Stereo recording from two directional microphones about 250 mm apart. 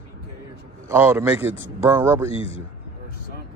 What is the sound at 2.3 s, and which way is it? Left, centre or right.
Speech, left.